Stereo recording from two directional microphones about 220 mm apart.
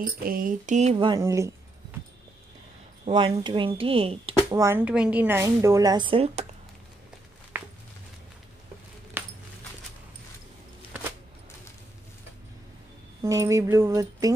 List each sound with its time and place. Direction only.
0.0 s a sound: 40° right (ahead or behind)
0.9 s a woman's voice: 15° right (ahead or behind)
3.1 s speech: 25° right (ahead or behind)
4.5 s a woman's voice: 15° right (ahead or behind)
9.2 s a sound: 10° right (ahead or behind)
13.2 s a woman's voice: 15° right (ahead or behind)